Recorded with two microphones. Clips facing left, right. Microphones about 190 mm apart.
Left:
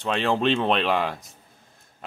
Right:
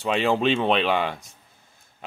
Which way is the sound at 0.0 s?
5° right (ahead or behind).